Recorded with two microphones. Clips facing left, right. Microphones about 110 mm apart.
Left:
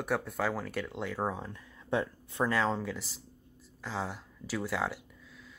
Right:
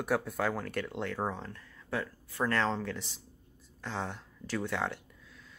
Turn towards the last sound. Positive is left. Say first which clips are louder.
# even
turn(degrees=5)  # may be behind; listen again after turning